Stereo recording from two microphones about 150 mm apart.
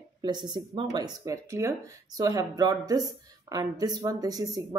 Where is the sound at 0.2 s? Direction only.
30° right (ahead or behind).